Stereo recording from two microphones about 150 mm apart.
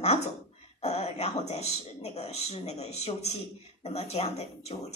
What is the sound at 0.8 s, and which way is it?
A woman's voice, 45° left (ahead or behind).